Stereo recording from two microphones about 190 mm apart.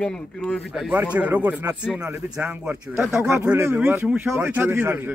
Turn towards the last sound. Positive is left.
turn(degrees=-10)  # may be behind; listen again after turning